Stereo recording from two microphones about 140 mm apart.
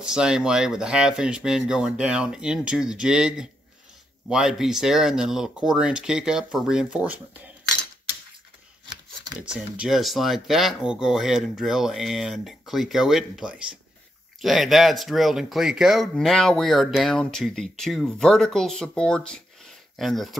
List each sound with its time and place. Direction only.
0.0 s speech: 5° right (ahead or behind)
8.8 s a sound: 30° right (ahead or behind)
9.4 s speech: 5° right (ahead or behind)